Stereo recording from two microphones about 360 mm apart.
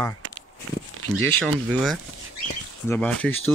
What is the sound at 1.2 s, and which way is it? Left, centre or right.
Speech, centre.